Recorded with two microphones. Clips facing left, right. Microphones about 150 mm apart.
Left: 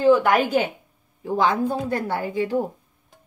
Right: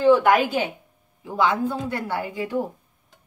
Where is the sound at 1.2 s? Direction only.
40° left (ahead or behind).